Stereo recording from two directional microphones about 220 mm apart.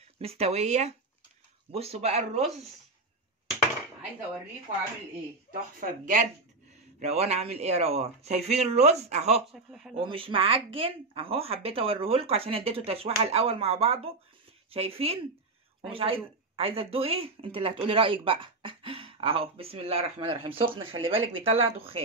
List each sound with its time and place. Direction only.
0.2 s speech: 25° right (ahead or behind)
5.5 s speech: 35° right (ahead or behind)